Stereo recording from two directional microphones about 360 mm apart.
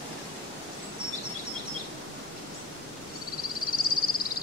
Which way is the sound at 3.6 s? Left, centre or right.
Left.